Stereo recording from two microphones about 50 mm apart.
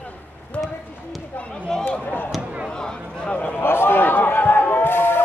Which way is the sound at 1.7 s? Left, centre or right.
Centre.